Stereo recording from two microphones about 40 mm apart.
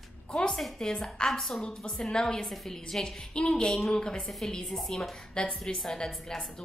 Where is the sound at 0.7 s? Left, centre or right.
Centre.